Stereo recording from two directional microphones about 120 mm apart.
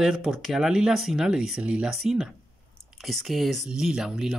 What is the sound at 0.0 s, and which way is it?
Speech, 5° right (ahead or behind).